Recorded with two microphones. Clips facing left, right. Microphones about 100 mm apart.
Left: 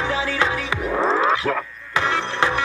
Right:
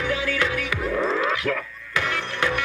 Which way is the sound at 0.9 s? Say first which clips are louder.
Left 4 dB; 40° left (ahead or behind).